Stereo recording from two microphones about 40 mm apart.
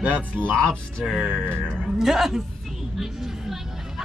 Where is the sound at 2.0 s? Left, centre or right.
Centre.